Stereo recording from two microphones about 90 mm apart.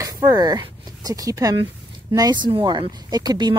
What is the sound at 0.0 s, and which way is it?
Speech, 40° right (ahead or behind).